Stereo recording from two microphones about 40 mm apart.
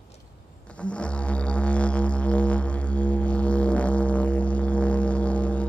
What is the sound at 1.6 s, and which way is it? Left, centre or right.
Music, left.